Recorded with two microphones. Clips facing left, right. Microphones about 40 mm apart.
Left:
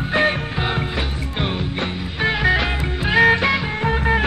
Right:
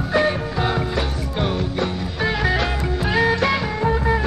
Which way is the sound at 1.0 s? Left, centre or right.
Left.